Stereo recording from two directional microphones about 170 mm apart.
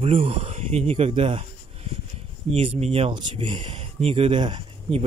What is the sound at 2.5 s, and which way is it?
Speech, 35° right (ahead or behind).